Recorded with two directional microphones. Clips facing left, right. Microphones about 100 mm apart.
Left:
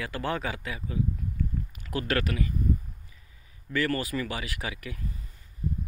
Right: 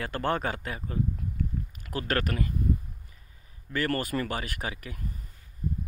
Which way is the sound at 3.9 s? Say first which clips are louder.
Right 1 dB; 50° right (ahead or behind).